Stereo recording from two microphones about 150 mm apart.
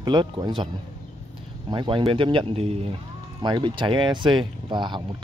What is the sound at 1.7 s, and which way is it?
Speech, 30° right (ahead or behind).